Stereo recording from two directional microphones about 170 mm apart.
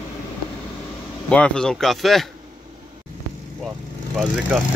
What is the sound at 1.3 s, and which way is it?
Speech, 5° left (ahead or behind).